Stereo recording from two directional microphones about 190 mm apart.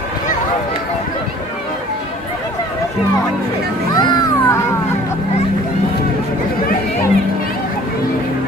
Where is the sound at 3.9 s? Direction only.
20° left (ahead or behind).